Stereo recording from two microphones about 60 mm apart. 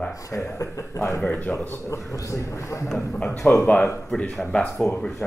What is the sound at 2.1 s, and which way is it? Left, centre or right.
Speech, left.